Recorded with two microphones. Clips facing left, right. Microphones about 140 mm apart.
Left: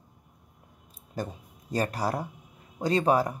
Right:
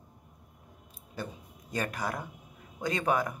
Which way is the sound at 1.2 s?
40° left (ahead or behind).